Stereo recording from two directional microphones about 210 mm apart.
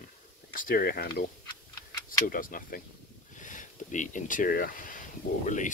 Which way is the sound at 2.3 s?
40° left (ahead or behind).